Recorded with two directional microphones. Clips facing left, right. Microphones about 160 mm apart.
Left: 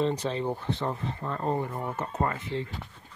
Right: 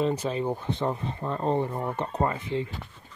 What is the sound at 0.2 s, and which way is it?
Speech, 10° right (ahead or behind).